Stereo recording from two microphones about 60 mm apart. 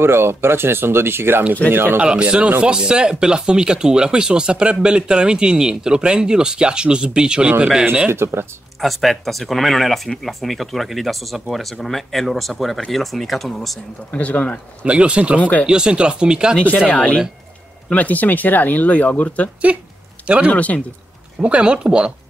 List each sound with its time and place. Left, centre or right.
0.0 s speech: right
2.0 s speech: centre
8.1 s speech: right
8.8 s speech: centre
14.1 s speech: left
14.9 s speech: centre
16.9 s speech: centre
20.2 s speech: centre
20.5 s speech: left
21.4 s speech: centre